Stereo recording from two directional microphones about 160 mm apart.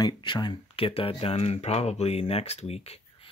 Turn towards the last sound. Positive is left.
turn(degrees=40)  # may be behind; listen again after turning